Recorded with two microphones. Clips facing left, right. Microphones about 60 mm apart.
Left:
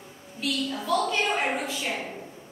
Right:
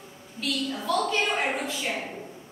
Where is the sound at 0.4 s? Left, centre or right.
Centre.